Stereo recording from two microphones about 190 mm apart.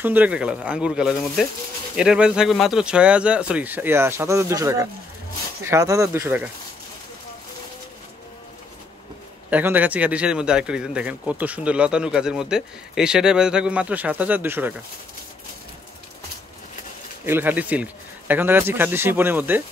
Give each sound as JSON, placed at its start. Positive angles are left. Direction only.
{"t": 0.0, "sound": "speech", "side_deg": -10}
{"t": 9.5, "sound": "speech", "side_deg": -10}
{"t": 17.3, "sound": "speech", "side_deg": -10}